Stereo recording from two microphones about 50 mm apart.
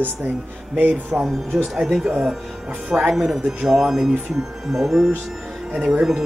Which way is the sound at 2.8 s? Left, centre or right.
Right.